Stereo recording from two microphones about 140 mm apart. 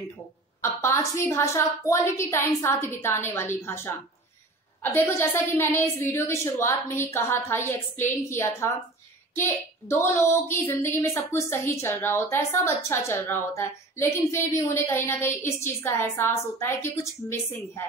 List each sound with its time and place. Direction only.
0.6 s a woman's voice: 20° left (ahead or behind)
4.9 s a woman's voice: 15° left (ahead or behind)